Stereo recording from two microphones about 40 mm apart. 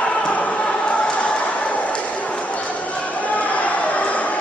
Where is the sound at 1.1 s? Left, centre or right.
Left.